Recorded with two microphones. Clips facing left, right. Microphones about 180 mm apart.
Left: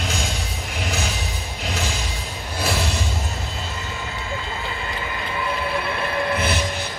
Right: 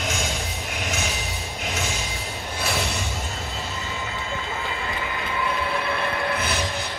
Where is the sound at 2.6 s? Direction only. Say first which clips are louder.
Left 3 dB; 35° left (ahead or behind).